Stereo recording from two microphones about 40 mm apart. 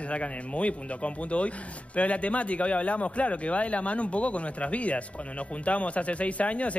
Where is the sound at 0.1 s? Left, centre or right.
Left.